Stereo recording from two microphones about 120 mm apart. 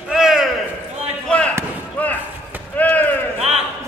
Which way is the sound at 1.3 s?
10° left (ahead or behind).